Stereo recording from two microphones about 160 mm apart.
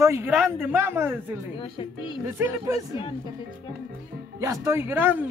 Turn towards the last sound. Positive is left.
turn(degrees=-10)  # may be behind; listen again after turning